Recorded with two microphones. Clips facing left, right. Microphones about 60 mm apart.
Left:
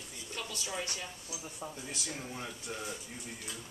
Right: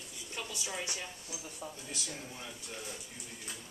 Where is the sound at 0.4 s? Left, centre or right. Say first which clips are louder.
Even; centre.